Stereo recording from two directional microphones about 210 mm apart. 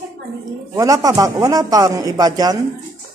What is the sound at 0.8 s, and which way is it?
Speech, 15° right (ahead or behind).